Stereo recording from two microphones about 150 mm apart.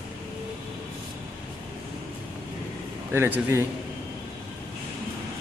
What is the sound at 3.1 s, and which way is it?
Speech, 15° right (ahead or behind).